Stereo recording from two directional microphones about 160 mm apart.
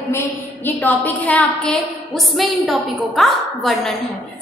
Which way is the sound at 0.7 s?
10° left (ahead or behind).